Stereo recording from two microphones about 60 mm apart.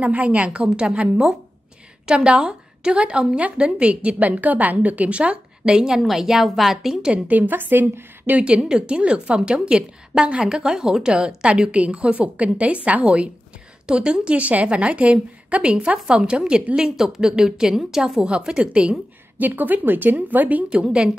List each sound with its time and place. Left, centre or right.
0.0 s a woman's voice: right; by 7.0 s centre
7.0 s a woman's voice: right
8.3 s a woman's voice: centre
20.7 s a woman's voice: centre